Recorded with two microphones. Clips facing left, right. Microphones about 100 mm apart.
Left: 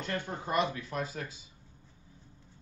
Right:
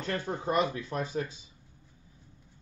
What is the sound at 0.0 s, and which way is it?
Speech, 35° right (ahead or behind).